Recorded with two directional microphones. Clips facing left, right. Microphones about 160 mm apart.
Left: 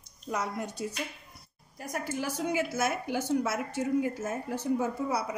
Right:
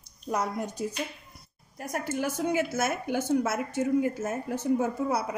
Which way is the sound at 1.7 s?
55° right (ahead or behind).